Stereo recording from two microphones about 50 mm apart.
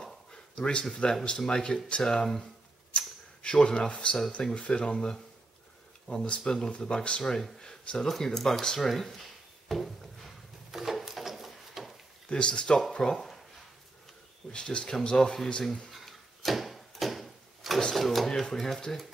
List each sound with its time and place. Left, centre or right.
0.0 s a sound: centre
1.2 s speech: centre
3.4 s speech: centre
7.8 s speech: left
8.1 s speech: centre
9.7 s drawer open or close: centre
12.3 s speech: centre
14.5 s speech: centre
15.9 s a sound: centre
17.9 s speech: centre